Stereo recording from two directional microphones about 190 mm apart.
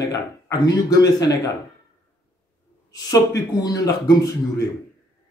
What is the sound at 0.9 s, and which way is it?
Speech, 20° left (ahead or behind).